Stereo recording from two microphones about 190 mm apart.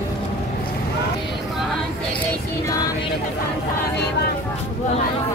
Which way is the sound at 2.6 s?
20° left (ahead or behind).